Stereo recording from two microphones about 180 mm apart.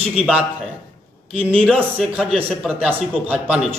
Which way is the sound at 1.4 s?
30° right (ahead or behind).